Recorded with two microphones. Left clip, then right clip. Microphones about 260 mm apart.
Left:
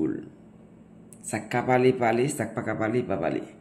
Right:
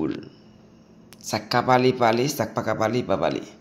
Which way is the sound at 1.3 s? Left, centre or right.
Centre.